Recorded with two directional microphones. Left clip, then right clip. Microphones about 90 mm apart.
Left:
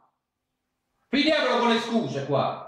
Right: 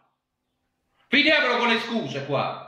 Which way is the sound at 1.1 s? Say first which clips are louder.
Right 3 dB; 15° right (ahead or behind).